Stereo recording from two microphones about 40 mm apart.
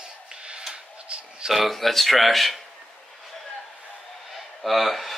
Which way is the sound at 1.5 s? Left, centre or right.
Centre.